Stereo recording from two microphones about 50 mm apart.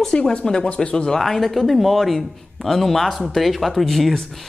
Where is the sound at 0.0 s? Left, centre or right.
Centre.